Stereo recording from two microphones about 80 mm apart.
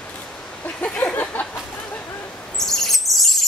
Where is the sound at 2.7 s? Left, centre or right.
Centre.